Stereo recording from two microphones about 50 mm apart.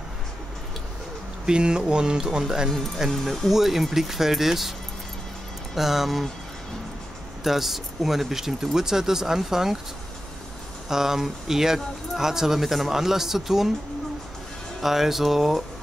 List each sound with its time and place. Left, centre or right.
1.4 s speech: centre
3.1 s speech: centre
5.8 s speech: centre
7.4 s speech: centre
10.9 s speech: centre
14.8 s speech: centre